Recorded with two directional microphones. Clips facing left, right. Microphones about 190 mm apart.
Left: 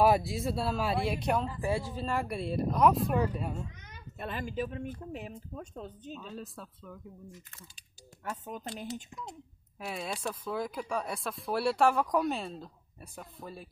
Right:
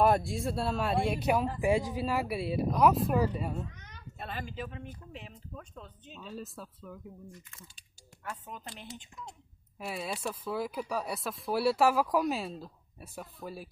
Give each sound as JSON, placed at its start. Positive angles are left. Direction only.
{"t": 0.0, "sound": "speech", "side_deg": 0}
{"t": 4.2, "sound": "speech", "side_deg": 50}
{"t": 6.1, "sound": "speech", "side_deg": 0}
{"t": 8.2, "sound": "speech", "side_deg": 40}
{"t": 9.8, "sound": "speech", "side_deg": -5}